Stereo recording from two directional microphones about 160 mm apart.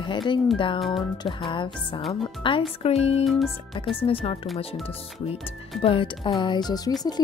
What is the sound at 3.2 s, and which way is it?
Speech, centre (ahead or behind).